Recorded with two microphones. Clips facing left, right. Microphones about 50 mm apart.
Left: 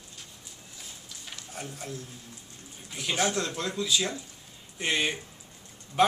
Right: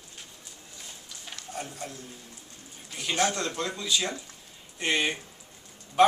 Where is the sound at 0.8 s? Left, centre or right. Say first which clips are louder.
Right 1 dB; centre.